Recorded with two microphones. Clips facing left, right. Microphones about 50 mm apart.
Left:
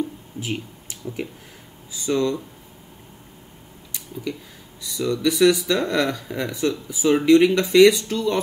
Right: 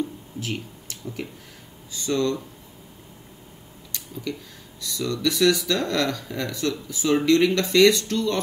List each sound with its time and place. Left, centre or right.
0.4 s speech: centre
3.9 s a sound: centre
4.8 s speech: centre